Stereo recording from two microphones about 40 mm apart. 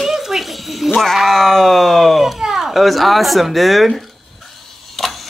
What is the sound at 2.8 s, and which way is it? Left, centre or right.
Speech, centre.